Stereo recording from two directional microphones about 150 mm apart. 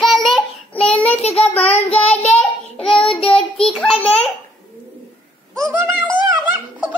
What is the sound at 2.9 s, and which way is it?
Child singing, 5° left (ahead or behind).